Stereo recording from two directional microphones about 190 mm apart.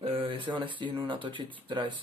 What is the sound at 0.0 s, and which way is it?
Speech, 30° right (ahead or behind).